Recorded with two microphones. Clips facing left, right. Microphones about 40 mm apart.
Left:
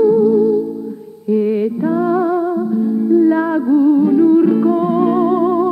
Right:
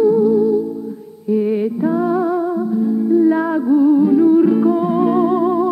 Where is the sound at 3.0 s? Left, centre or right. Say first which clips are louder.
Left 2 dB; centre.